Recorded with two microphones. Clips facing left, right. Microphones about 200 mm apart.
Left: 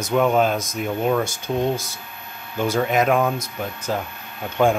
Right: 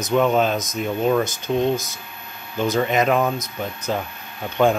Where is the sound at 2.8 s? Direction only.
5° left (ahead or behind).